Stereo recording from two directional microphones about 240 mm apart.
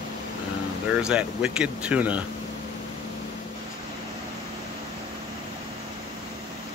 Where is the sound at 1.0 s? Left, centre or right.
Centre.